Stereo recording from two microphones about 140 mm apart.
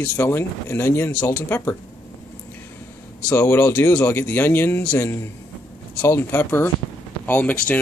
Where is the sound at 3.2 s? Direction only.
15° left (ahead or behind).